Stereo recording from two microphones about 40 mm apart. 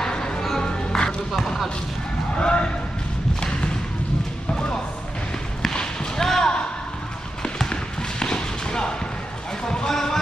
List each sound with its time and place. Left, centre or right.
0.0 s music: centre
1.3 s music: centre
2.3 s a sound: left
3.3 s thump: left
5.7 s basketball bounce: centre
9.7 s music: centre